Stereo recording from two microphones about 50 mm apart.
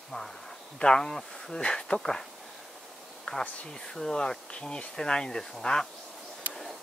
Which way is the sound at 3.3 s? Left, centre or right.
Left.